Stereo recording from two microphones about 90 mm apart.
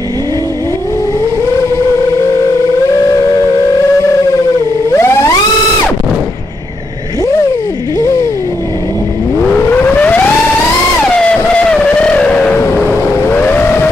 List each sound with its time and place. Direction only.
4.9 s music: 30° left (ahead or behind)
9.5 s siren: 15° left (ahead or behind)
11.1 s a sound: 10° left (ahead or behind)